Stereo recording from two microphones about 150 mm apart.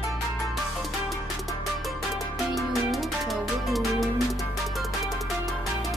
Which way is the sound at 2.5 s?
Centre (ahead or behind).